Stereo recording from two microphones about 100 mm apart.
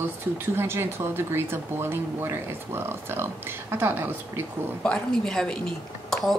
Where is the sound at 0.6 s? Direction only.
25° right (ahead or behind).